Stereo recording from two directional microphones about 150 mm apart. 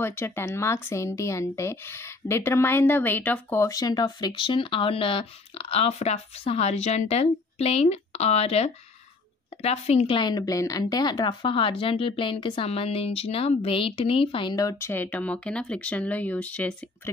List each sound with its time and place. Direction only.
0.0 s a woman's voice: 15° left (ahead or behind)